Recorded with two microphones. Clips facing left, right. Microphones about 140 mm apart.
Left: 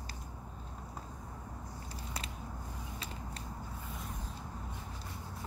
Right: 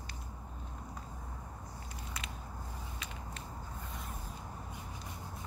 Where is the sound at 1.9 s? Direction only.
35° left (ahead or behind).